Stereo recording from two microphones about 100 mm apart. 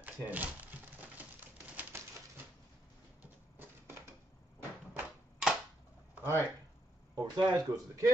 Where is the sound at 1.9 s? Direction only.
25° right (ahead or behind).